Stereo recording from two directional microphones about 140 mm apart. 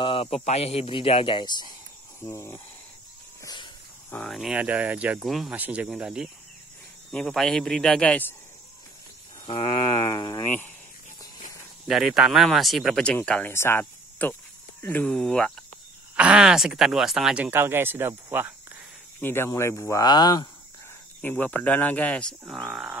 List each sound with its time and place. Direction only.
0.0 s speech: 40° left (ahead or behind)
2.2 s speech: 20° left (ahead or behind)
3.4 s walk: 30° left (ahead or behind)
4.1 s speech: 5° left (ahead or behind)
4.4 s speech: 5° right (ahead or behind)
5.5 s speech: 10° right (ahead or behind)
7.1 s speech: 5° left (ahead or behind)
9.9 s speech: 25° left (ahead or behind)
11.9 s speech: centre (ahead or behind)
16.2 s speech: 5° right (ahead or behind)
19.2 s speech: 15° left (ahead or behind)
21.2 s speech: 15° left (ahead or behind); by 22.9 s centre (ahead or behind)